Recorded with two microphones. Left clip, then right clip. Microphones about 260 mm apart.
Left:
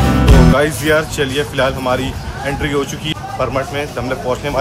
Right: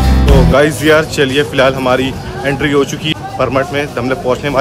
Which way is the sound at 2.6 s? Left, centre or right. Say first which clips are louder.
Right 6 dB; centre.